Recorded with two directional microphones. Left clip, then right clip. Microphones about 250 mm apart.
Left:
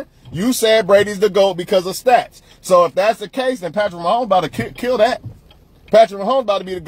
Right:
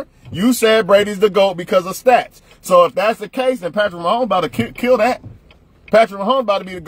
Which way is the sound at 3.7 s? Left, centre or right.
Right.